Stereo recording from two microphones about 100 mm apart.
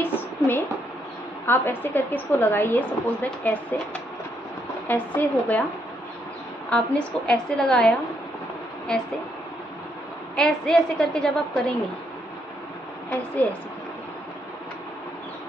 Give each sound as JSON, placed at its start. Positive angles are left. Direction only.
{"t": 0.0, "sound": "a sound", "side_deg": 20}
{"t": 1.4, "sound": "a woman's voice", "side_deg": 20}
{"t": 4.8, "sound": "a woman's voice", "side_deg": 15}
{"t": 6.7, "sound": "a woman's voice", "side_deg": 10}
{"t": 10.3, "sound": "a woman's voice", "side_deg": 5}